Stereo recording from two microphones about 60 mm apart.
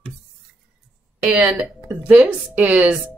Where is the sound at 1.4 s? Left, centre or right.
Right.